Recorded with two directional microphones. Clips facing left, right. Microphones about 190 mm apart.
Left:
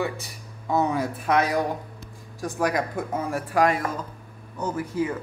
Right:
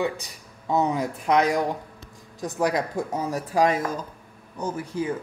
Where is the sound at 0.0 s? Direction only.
20° right (ahead or behind).